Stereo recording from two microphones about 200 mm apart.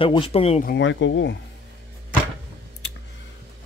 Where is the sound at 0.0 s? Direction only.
25° left (ahead or behind).